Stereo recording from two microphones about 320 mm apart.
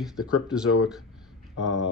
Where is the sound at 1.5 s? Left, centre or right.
Left.